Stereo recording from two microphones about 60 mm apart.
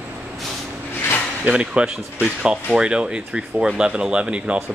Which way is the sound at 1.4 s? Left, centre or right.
Centre.